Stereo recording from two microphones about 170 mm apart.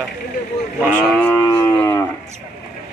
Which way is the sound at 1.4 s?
15° left (ahead or behind).